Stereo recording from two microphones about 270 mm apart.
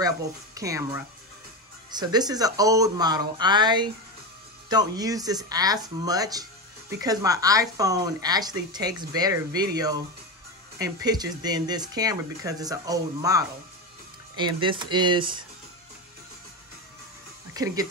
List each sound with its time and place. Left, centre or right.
0.6 s speech: centre
11.1 s speech: centre
17.6 s speech: centre